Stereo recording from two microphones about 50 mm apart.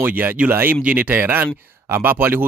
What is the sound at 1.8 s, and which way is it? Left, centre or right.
Speech, right.